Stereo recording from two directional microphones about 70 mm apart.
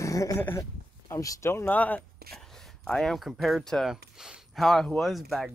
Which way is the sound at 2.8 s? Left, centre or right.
Centre.